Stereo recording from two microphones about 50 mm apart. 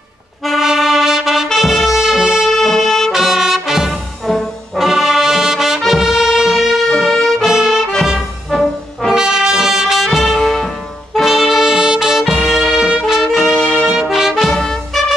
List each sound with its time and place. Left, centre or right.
0.5 s music: centre
2.5 s music: centre
3.1 s music: centre
4.7 s brass instrument: centre
5.9 s music: centre
6.9 s brass instrument: centre
7.4 s brass instrument: centre
8.5 s music: centre
9.1 s brass instrument: centre
10.4 s music: centre
13.6 s music: left
13.8 s brass instrument: centre
14.5 s trumpet: centre